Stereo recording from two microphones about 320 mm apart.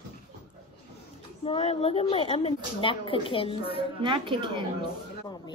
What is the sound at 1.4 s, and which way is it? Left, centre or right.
Speech, centre.